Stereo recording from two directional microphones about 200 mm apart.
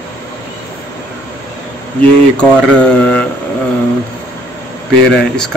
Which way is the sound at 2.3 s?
5° left (ahead or behind).